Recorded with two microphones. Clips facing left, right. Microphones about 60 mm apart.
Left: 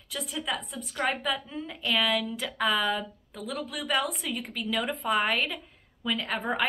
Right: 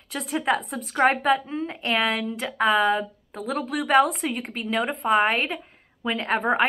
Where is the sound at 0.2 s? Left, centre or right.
Right.